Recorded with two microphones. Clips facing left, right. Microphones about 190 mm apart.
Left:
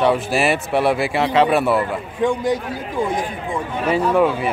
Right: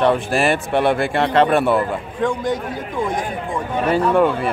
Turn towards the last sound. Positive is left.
turn(degrees=0)  # may be behind; listen again after turning